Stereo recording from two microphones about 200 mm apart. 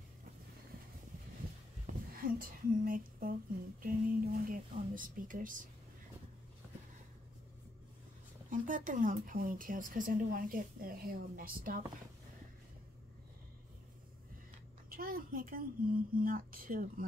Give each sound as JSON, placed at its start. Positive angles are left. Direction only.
{"t": 1.9, "sound": "a sound", "side_deg": -45}
{"t": 3.8, "sound": "speech", "side_deg": -45}
{"t": 8.5, "sound": "speech", "side_deg": -40}
{"t": 14.9, "sound": "speech", "side_deg": -45}